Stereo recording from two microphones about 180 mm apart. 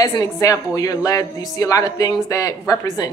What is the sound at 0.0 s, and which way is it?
Speech, 20° left (ahead or behind).